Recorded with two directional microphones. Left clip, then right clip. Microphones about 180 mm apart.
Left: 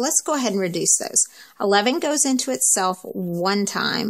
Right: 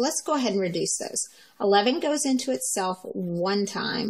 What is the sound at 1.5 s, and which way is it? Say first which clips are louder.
Speech: left 2 dB; 40° left (ahead or behind).